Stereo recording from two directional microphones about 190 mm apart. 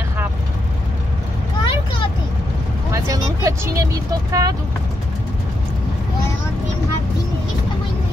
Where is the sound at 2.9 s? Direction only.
15° right (ahead or behind).